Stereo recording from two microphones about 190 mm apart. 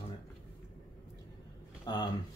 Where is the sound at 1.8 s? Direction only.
20° left (ahead or behind).